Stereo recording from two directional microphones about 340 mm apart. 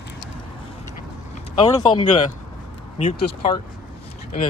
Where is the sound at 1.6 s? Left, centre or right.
Centre.